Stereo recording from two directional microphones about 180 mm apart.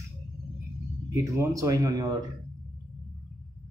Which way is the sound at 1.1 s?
15° right (ahead or behind).